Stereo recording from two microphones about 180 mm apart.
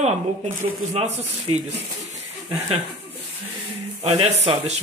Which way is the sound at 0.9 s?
35° right (ahead or behind).